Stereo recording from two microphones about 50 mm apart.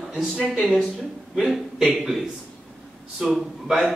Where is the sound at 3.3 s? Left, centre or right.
Centre.